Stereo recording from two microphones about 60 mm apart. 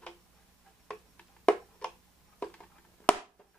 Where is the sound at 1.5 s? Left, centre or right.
Centre.